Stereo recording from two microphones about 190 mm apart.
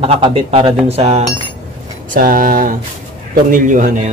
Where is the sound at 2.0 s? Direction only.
45° right (ahead or behind).